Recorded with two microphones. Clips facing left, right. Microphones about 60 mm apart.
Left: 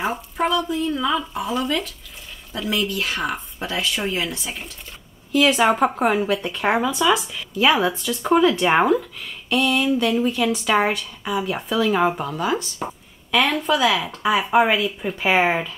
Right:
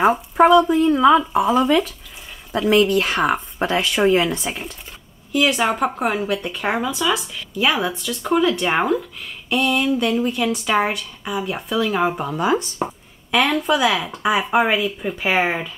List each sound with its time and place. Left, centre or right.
0.7 s speech: right
5.3 s speech: centre
12.5 s speech: right
12.8 s speech: centre